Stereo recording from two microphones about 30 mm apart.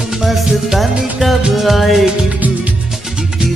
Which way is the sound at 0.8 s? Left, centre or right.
Centre.